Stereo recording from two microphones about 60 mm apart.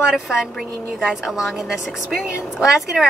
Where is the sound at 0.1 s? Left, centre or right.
Centre.